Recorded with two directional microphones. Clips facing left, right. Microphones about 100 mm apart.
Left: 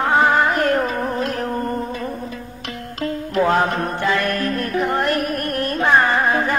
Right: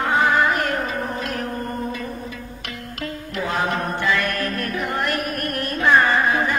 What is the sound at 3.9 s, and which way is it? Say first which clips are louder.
Music: left 2 dB; 35° left (ahead or behind).